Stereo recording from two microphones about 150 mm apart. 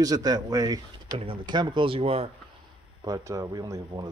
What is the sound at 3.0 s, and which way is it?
Speech, 20° right (ahead or behind).